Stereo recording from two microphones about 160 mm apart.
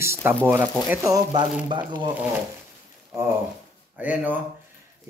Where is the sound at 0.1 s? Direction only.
15° right (ahead or behind); by 2.0 s 30° right (ahead or behind).